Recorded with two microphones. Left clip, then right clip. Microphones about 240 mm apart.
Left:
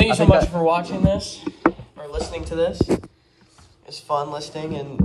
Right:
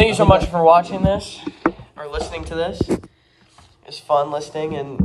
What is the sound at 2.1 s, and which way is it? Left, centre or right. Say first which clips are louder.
Speech: right 1 dB; right.